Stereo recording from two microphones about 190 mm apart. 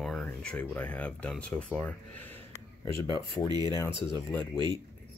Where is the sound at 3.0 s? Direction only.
25° left (ahead or behind).